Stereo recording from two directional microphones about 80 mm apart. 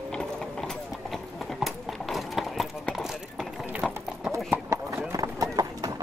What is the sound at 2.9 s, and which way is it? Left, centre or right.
Horse, centre.